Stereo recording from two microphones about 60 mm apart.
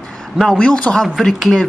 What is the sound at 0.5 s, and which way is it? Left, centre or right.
Speech, centre.